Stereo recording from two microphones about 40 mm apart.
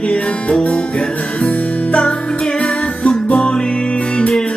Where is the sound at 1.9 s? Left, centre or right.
Left.